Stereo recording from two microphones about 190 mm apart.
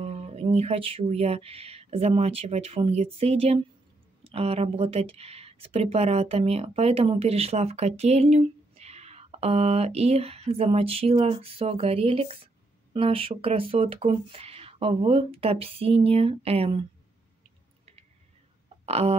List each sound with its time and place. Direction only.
0.0 s speech: 30° right (ahead or behind)
18.9 s speech: 30° right (ahead or behind)